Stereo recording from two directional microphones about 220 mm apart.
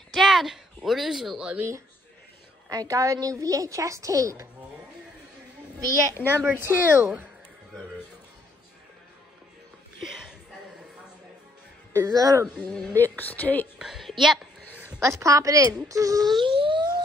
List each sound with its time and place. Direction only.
0.1 s speech: centre (ahead or behind)
2.7 s a woman's voice: 15° right (ahead or behind)
6.2 s a woman's voice: 10° right (ahead or behind)
11.9 s a woman's voice: 15° right (ahead or behind)
12.6 s a woman's voice: 5° left (ahead or behind); by 16.3 s 15° right (ahead or behind)
16.3 s a sound: 20° right (ahead or behind)